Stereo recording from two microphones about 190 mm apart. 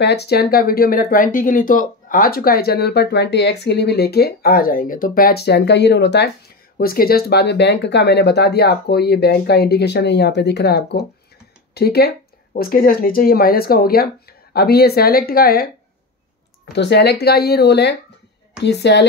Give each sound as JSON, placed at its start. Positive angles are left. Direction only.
{"t": 0.0, "sound": "speech", "side_deg": 60}
{"t": 6.8, "sound": "speech", "side_deg": 50}
{"t": 16.7, "sound": "speech", "side_deg": 60}